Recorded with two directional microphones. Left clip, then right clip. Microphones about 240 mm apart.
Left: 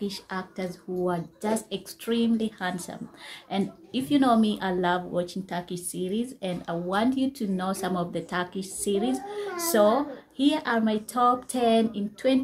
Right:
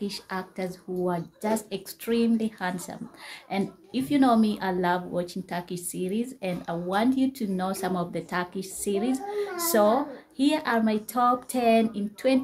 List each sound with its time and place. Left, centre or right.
0.0 s a woman's voice: centre